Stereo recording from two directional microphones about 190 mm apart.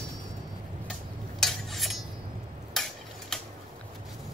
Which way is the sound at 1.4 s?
Centre (ahead or behind).